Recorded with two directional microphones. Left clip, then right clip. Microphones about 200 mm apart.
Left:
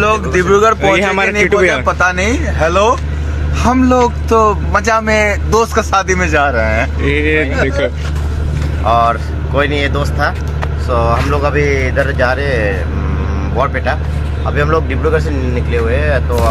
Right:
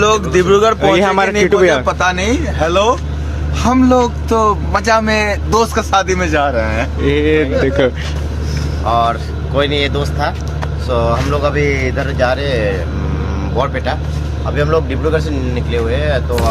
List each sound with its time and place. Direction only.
0.5 s a man's voice: 10° right (ahead or behind)
7.0 s a man's voice: 15° right (ahead or behind)
8.8 s speech: centre (ahead or behind)